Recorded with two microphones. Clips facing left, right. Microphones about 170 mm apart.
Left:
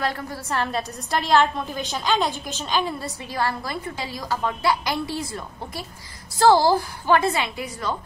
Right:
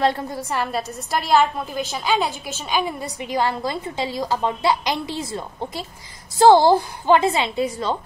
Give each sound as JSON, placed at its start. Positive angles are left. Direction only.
{"t": 0.0, "sound": "a woman's voice", "side_deg": -20}